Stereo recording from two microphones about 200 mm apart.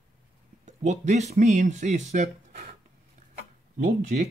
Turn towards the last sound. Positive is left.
turn(degrees=-35)  # may be behind; listen again after turning